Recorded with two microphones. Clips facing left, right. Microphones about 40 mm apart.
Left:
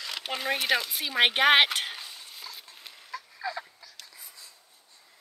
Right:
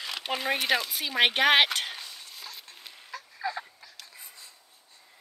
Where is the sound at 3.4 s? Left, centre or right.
Right.